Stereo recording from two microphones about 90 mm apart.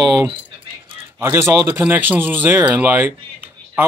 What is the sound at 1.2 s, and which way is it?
A man's voice, 30° right (ahead or behind).